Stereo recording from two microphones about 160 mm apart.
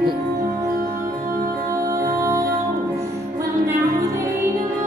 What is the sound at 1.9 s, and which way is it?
Music, 20° right (ahead or behind).